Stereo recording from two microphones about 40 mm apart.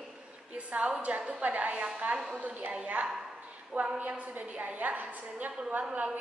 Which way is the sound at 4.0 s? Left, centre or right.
Right.